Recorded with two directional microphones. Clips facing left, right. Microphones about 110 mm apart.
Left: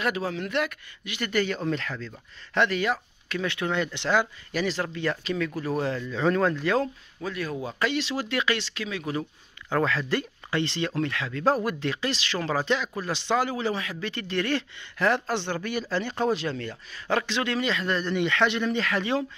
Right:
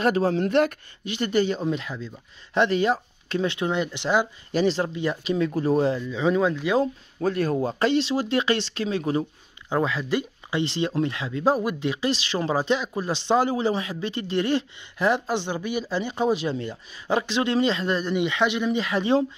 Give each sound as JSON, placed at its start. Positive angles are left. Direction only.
{"t": 0.0, "sound": "speech", "side_deg": -35}
{"t": 6.0, "sound": "speech", "side_deg": -5}
{"t": 7.2, "sound": "speech", "side_deg": -40}
{"t": 9.7, "sound": "speech", "side_deg": -15}